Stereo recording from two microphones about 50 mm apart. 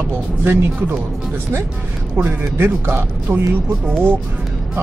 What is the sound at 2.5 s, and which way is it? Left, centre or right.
Speech, right.